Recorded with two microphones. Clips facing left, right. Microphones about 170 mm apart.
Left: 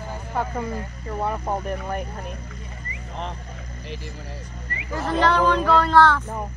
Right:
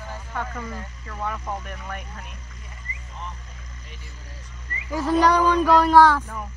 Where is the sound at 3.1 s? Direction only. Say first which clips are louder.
Left 6 dB; 65° left (ahead or behind).